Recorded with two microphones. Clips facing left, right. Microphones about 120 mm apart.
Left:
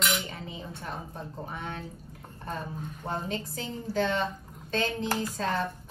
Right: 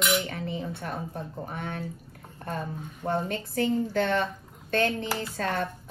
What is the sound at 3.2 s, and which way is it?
A woman's voice, 55° right (ahead or behind).